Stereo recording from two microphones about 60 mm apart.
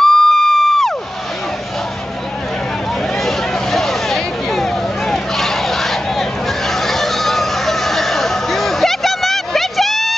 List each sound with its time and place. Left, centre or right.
0.0 s crowd: centre
3.2 s vehicle: centre
6.7 s a sound: centre